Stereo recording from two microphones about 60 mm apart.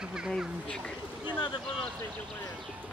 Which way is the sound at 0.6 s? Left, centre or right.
Centre.